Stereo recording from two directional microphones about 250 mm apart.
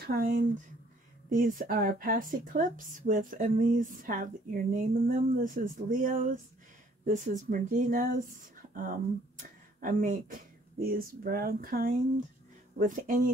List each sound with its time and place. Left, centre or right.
0.0 s speech: right
9.4 s speech: right